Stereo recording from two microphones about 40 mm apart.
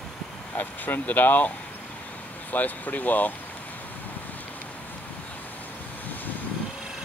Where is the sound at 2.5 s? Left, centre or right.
Left.